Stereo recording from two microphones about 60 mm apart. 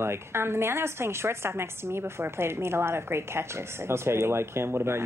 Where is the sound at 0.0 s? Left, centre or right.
Right.